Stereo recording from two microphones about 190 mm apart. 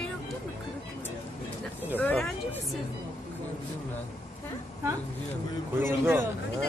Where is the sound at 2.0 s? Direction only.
10° left (ahead or behind).